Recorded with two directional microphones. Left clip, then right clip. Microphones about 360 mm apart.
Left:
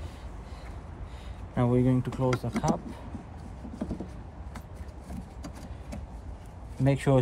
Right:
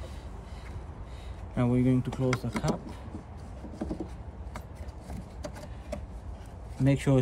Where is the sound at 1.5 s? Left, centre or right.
Centre.